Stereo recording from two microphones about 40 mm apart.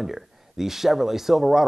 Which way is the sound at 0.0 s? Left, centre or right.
Centre.